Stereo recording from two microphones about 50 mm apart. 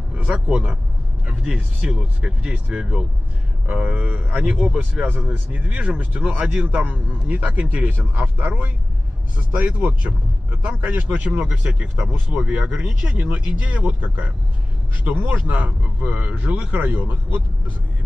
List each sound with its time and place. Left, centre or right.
0.3 s speech: right
1.2 s vehicle: right
1.9 s speech: centre
3.6 s speech: right
5.0 s speech: right